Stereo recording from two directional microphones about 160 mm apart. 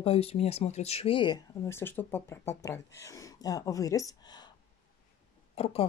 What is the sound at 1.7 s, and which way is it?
Speech, 15° left (ahead or behind).